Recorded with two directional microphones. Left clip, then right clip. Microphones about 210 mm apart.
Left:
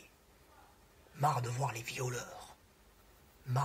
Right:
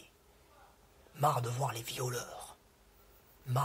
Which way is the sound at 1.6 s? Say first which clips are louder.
Right 1 dB; 30° right (ahead or behind).